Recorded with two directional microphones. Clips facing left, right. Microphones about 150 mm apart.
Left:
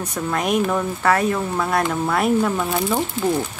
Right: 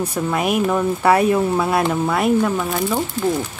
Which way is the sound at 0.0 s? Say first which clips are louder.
Right 3 dB; 10° right (ahead or behind).